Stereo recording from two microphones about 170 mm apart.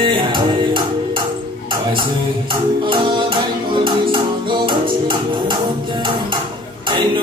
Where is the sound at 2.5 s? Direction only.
30° right (ahead or behind).